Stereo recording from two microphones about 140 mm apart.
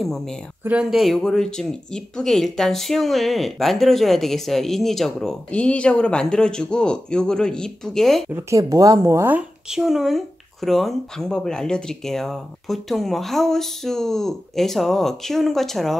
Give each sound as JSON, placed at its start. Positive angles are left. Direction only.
{"t": 0.0, "sound": "speech", "side_deg": 0}
{"t": 8.3, "sound": "speech", "side_deg": -20}
{"t": 9.7, "sound": "speech", "side_deg": 0}